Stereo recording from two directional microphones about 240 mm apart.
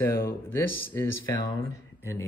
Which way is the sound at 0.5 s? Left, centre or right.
Centre.